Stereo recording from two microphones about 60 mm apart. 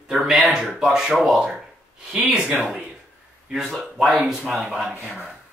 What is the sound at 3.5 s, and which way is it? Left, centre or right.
Speech, centre.